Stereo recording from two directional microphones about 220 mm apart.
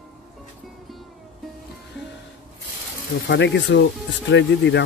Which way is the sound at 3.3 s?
55° left (ahead or behind).